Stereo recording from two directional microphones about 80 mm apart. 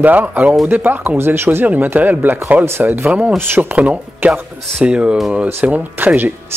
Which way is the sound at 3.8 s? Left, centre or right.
Centre.